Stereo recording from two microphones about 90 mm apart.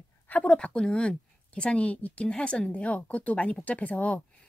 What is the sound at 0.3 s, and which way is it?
A woman's voice, 15° left (ahead or behind).